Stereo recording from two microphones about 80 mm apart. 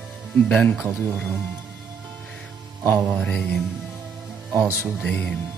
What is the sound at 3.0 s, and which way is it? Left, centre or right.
Speech, centre.